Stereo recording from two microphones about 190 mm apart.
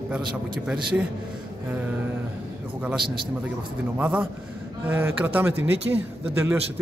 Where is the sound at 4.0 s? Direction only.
10° right (ahead or behind).